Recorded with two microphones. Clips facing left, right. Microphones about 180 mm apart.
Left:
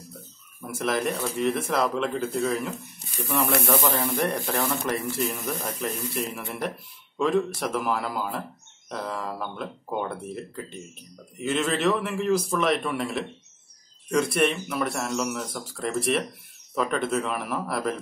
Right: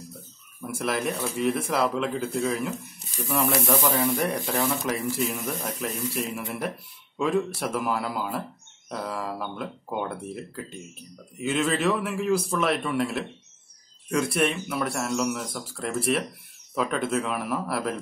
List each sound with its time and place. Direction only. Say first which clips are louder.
0.6 s speech: left 1 dB; 5° right (ahead or behind)
3.1 s speech: left 1 dB; 60° left (ahead or behind)
3.6 s speech: right 1 dB; centre (ahead or behind)